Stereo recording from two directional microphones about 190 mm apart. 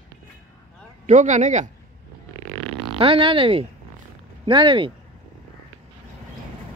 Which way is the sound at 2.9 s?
30° right (ahead or behind).